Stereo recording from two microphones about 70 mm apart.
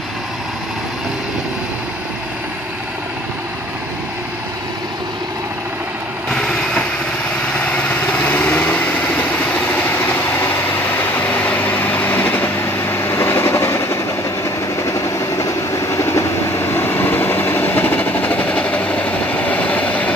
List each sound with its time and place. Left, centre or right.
6.3 s vehicle: centre
11.1 s vehicle: left